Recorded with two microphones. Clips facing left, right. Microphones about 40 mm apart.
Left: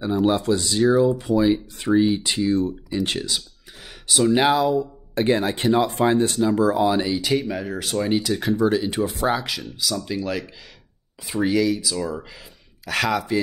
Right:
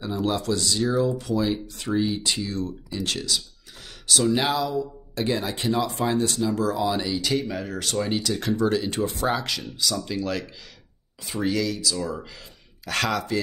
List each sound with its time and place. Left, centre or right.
0.1 s speech: centre
1.1 s speech: left
4.6 s speech: left
6.9 s speech: centre